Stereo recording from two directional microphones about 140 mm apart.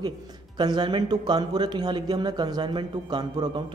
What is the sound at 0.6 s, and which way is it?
A man's voice, 30° right (ahead or behind).